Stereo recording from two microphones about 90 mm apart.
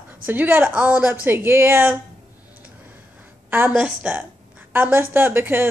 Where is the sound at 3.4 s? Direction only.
20° right (ahead or behind).